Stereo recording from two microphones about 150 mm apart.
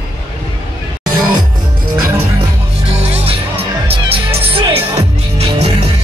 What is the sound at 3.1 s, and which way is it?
Music, 40° right (ahead or behind).